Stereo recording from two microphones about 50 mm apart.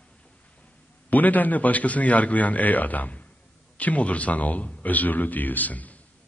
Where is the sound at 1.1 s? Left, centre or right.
Left.